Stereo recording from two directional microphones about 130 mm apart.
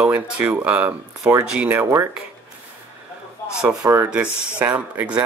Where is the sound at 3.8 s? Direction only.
25° right (ahead or behind).